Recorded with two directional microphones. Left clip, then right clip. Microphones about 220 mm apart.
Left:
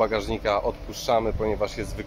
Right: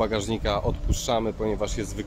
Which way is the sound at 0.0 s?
15° right (ahead or behind).